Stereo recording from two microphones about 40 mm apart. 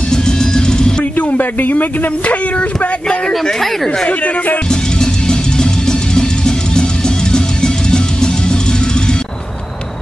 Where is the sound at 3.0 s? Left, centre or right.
Left.